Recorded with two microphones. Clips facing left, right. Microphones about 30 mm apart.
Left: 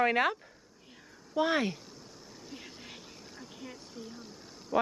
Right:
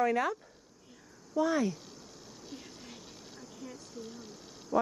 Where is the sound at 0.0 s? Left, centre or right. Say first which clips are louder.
Left 2 dB; left.